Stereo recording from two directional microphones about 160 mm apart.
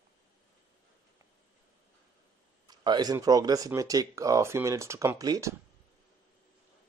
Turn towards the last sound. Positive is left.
turn(degrees=-20)  # may be behind; listen again after turning